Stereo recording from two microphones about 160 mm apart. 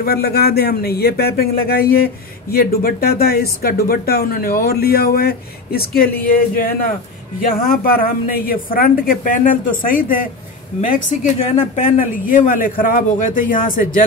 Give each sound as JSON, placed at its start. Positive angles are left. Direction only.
{"t": 0.0, "sound": "speech", "side_deg": 80}
{"t": 11.3, "sound": "speech", "side_deg": 40}
{"t": 12.3, "sound": "speech", "side_deg": 60}